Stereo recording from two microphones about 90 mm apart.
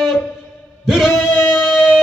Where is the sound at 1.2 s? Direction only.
25° left (ahead or behind).